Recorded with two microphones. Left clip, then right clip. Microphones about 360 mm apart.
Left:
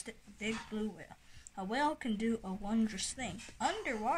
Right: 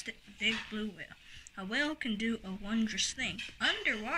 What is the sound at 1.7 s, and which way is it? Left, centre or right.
Speech, left.